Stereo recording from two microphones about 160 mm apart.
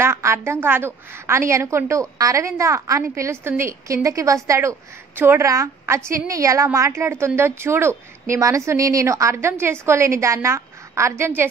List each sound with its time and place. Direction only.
0.0 s a woman's voice: 15° right (ahead or behind)